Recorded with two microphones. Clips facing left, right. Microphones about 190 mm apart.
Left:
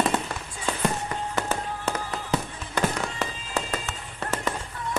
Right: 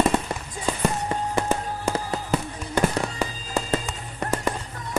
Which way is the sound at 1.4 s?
15° right (ahead or behind).